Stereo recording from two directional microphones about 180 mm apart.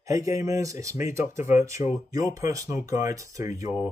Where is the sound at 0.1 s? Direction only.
20° right (ahead or behind).